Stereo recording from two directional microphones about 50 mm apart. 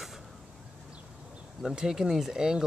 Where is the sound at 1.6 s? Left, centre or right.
Centre.